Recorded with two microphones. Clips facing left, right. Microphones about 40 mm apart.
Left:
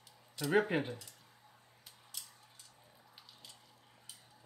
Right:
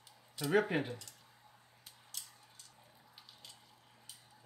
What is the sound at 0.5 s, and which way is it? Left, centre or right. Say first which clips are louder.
Speech: even; centre.